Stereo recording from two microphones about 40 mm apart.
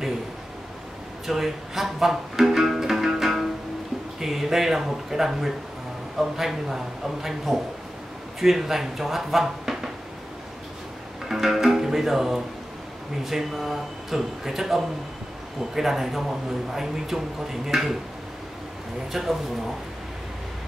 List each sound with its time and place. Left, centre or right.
1.2 s music: centre
4.2 s speech: centre
11.2 s music: centre
13.2 s speech: centre
19.1 s speech: centre